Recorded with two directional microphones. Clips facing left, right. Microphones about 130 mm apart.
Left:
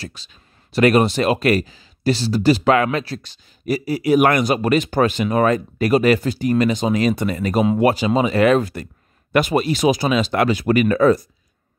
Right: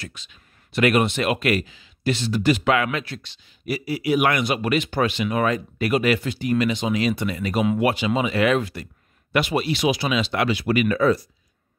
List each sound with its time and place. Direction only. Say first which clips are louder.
0.0 s speech: left 4 dB; 35° left (ahead or behind)